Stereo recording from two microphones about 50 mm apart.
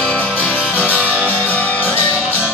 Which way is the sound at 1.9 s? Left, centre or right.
Left.